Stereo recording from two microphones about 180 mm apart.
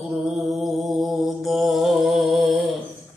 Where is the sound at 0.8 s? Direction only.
Centre (ahead or behind).